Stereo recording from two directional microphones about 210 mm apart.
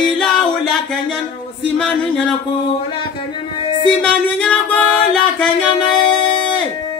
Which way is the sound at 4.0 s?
5° left (ahead or behind).